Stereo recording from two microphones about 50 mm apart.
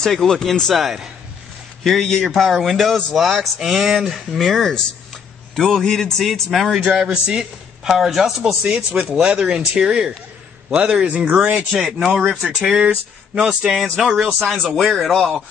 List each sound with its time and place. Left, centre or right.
0.0 s a man's voice: centre
6.8 s speech: right; by 8.5 s centre
8.6 s speech: right
11.7 s speech: centre
13.8 s a man's voice: centre